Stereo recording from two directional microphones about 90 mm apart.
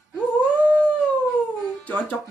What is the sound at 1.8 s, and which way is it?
Music, 15° left (ahead or behind).